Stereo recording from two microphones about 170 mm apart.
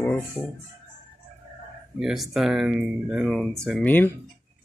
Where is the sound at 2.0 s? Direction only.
Centre (ahead or behind).